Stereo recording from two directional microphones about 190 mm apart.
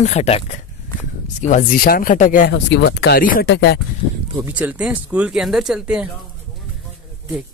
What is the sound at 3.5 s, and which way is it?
Speech, 60° left (ahead or behind).